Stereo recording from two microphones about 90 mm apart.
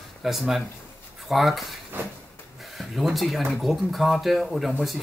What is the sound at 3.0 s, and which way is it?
Speech, centre (ahead or behind).